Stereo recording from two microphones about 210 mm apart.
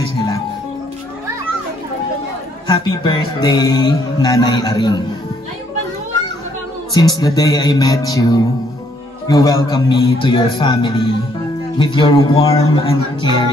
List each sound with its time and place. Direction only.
2.7 s music: 20° left (ahead or behind)
6.9 s music: 20° left (ahead or behind)